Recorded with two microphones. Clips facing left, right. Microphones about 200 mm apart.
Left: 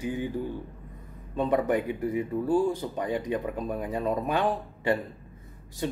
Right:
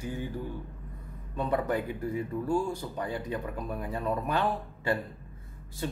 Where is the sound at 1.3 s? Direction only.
20° left (ahead or behind).